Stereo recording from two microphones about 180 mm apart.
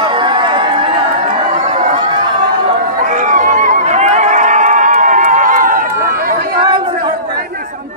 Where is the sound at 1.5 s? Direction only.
40° right (ahead or behind).